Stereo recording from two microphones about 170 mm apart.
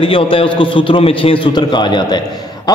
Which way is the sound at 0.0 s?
30° left (ahead or behind).